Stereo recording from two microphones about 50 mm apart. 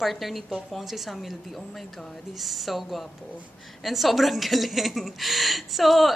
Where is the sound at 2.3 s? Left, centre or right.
Centre.